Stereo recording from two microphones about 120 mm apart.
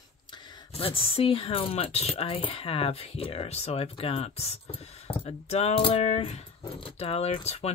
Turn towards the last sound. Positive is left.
turn(degrees=60)  # may be behind; listen again after turning